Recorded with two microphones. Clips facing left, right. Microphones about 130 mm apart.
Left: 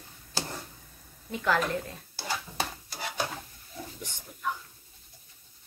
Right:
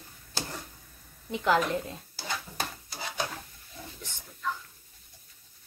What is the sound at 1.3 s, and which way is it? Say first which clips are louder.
Speech: right 2 dB; 20° right (ahead or behind).